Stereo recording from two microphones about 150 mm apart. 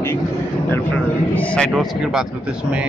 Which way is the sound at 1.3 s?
5° left (ahead or behind).